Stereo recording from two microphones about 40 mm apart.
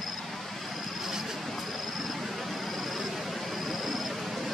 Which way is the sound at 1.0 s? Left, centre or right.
Centre.